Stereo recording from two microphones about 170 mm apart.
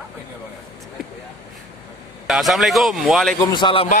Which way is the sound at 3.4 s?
25° left (ahead or behind).